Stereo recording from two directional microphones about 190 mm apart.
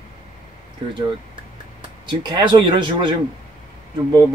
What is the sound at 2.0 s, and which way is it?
Speech, 25° right (ahead or behind).